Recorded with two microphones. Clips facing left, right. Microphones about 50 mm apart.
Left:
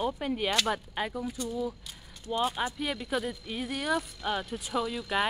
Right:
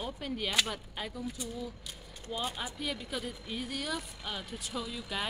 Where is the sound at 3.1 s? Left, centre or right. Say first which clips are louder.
Left 6 dB; centre.